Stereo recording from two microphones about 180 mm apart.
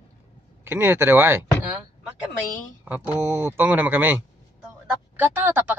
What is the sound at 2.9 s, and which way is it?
Speech, 10° right (ahead or behind).